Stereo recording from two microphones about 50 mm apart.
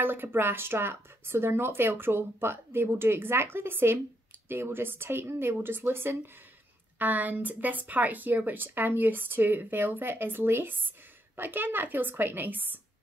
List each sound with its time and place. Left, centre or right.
0.0 s speech: right
7.0 s speech: right